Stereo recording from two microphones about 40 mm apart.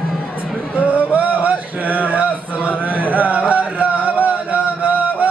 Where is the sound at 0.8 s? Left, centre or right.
Right.